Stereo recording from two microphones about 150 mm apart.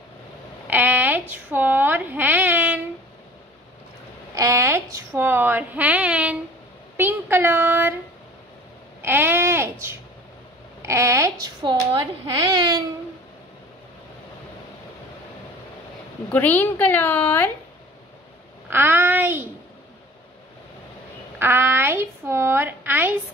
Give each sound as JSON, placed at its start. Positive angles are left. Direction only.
{"t": 0.7, "sound": "a sound", "side_deg": -10}
{"t": 1.3, "sound": "a woman's voice", "side_deg": -10}
{"t": 4.4, "sound": "a woman's voice", "side_deg": -20}
{"t": 9.0, "sound": "a sound", "side_deg": -15}
{"t": 10.8, "sound": "a woman's voice", "side_deg": -20}
{"t": 12.5, "sound": "babbling", "side_deg": -25}
{"t": 16.3, "sound": "a woman's voice", "side_deg": 10}
{"t": 18.7, "sound": "a woman's voice", "side_deg": -15}
{"t": 21.4, "sound": "a woman's voice", "side_deg": -15}